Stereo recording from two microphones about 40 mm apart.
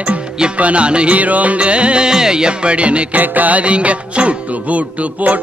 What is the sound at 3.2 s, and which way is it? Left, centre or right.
Music, right.